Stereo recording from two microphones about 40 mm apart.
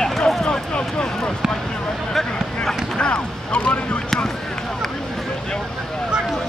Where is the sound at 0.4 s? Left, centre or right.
Left.